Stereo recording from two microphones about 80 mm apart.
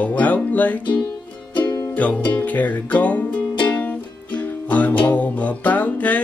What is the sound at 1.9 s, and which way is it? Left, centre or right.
Music, centre.